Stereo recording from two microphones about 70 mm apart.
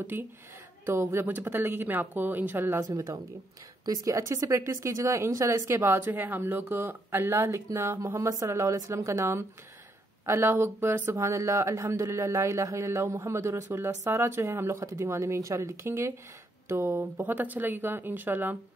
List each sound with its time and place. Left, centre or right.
0.1 s speech: right
2.8 s speech: right
11.1 s speech: right